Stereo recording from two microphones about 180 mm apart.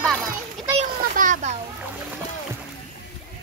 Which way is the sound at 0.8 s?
45° right (ahead or behind).